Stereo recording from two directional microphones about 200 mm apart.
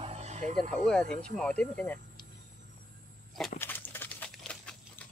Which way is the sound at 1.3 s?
5° left (ahead or behind).